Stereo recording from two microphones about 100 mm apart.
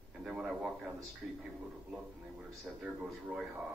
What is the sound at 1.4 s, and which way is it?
A man's voice, 10° right (ahead or behind).